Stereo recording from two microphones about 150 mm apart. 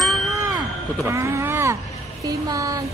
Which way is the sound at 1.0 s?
20° right (ahead or behind).